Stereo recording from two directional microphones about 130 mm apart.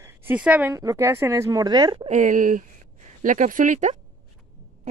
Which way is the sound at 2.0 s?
65° right (ahead or behind).